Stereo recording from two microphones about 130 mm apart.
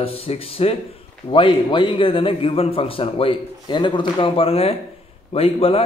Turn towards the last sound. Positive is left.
turn(degrees=50)  # may be behind; listen again after turning